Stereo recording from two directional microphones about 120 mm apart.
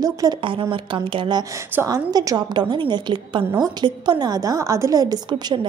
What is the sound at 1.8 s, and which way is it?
A woman's voice, 30° right (ahead or behind).